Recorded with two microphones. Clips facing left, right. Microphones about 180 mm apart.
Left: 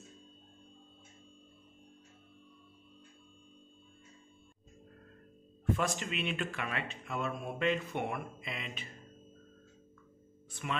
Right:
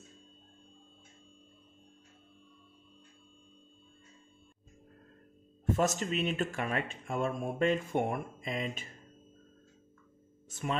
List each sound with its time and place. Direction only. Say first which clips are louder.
5.7 s speech: right 4 dB; 45° right (ahead or behind)
10.5 s speech: right 3 dB; 40° right (ahead or behind)